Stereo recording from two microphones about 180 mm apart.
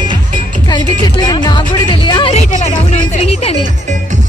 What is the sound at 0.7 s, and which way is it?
Music, 25° left (ahead or behind).